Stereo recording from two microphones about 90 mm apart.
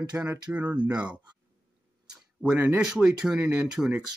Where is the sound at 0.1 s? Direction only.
20° right (ahead or behind).